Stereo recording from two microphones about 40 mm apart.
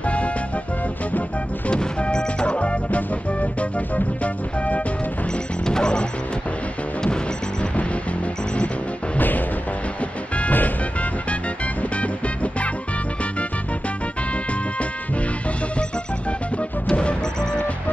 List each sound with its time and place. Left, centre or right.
0.0 s music: left
1.7 s music: left
5.7 s music: left
10.5 s music: left